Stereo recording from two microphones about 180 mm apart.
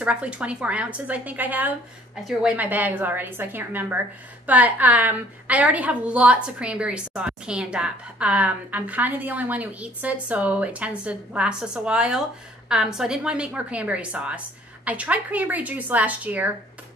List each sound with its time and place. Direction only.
0.0 s a woman's voice: 5° right (ahead or behind)